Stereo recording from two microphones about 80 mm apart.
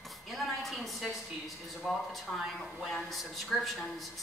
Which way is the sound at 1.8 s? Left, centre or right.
Centre.